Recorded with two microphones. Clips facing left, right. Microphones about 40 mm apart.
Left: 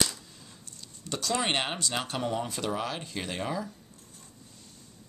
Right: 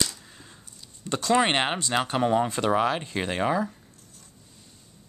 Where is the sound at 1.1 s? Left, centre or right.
Right.